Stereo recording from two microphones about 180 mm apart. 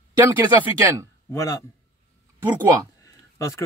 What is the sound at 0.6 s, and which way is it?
Speech, 10° right (ahead or behind).